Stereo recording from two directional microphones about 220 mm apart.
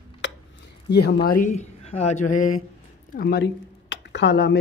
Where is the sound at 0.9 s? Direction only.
50° left (ahead or behind).